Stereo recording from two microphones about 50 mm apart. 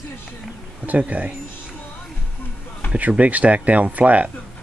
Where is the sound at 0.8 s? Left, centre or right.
Right.